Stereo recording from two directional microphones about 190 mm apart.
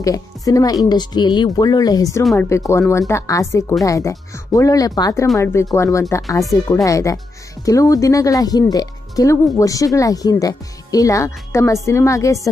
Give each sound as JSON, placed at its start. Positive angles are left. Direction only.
{"t": 0.0, "sound": "speech", "side_deg": 15}